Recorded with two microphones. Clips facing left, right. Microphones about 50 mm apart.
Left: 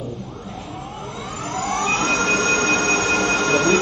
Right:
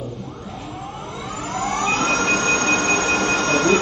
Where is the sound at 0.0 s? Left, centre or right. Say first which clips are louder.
Even; centre.